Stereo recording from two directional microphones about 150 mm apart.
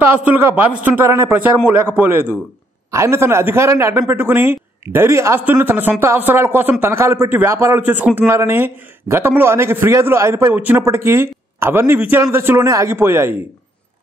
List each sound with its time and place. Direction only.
0.0 s speech: 15° right (ahead or behind)